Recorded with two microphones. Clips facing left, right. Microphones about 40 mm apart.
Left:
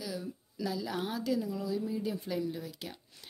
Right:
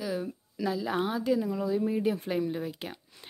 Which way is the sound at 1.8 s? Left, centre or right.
Right.